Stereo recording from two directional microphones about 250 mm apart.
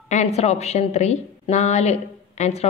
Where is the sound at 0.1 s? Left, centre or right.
Left.